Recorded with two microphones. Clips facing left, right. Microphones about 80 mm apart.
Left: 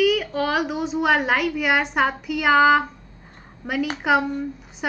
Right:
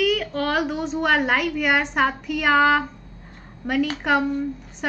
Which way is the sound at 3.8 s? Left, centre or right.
Centre.